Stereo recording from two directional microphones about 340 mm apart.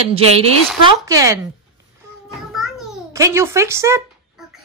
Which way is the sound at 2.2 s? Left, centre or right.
Centre.